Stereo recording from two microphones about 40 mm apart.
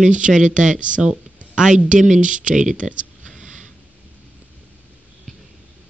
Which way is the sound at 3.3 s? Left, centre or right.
Centre.